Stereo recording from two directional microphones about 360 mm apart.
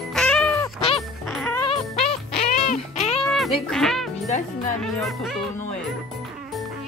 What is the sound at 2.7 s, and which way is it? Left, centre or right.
Music, centre.